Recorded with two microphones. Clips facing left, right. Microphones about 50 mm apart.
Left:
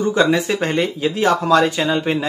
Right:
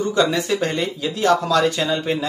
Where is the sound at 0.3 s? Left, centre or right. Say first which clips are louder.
Left 3 dB; left.